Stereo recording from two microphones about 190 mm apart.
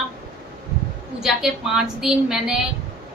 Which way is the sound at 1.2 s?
5° right (ahead or behind).